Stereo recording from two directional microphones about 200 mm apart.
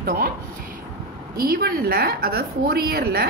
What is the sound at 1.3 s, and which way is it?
A woman's voice, 50° right (ahead or behind).